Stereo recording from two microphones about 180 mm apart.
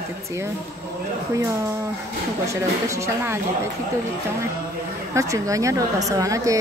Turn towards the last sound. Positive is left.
turn(degrees=-20)  # may be behind; listen again after turning